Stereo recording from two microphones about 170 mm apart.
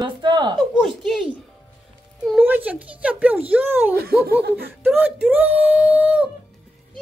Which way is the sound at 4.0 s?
65° right (ahead or behind).